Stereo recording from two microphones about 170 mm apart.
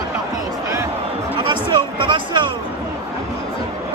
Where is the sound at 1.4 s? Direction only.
30° right (ahead or behind).